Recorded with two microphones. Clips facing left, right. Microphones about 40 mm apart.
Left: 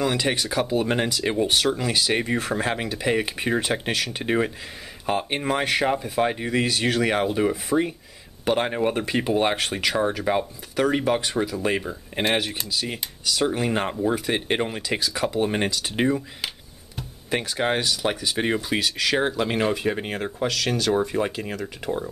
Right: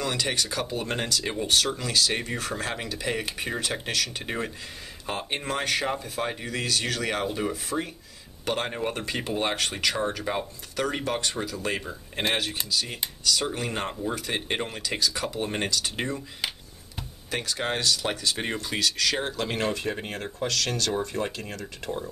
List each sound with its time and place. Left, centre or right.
0.0 s speech: centre
17.3 s speech: centre